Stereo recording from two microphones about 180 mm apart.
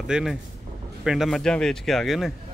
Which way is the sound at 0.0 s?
Centre (ahead or behind).